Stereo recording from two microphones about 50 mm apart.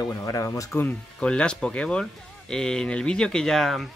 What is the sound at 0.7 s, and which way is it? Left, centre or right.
Speech, centre.